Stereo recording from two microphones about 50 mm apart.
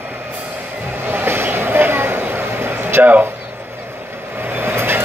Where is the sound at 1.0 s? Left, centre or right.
Right.